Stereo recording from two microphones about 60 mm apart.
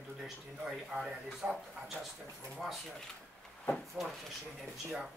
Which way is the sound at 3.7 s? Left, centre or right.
Centre.